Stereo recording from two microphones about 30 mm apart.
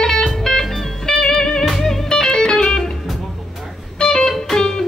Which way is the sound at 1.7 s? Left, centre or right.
Centre.